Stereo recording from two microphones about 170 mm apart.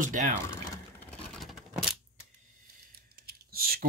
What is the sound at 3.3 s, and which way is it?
Typing, 65° right (ahead or behind).